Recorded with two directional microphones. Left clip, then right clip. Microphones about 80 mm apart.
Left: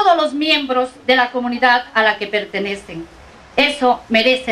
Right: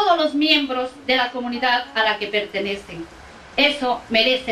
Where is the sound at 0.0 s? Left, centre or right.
Left.